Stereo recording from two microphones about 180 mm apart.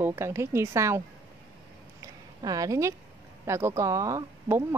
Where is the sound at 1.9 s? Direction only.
20° right (ahead or behind).